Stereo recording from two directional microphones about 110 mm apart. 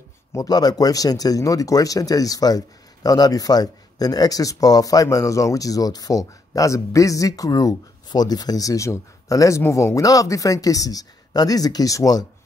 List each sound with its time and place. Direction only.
0.3 s speech: 35° left (ahead or behind)